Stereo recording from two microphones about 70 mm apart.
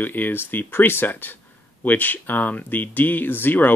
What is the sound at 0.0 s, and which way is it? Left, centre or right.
Speech, left.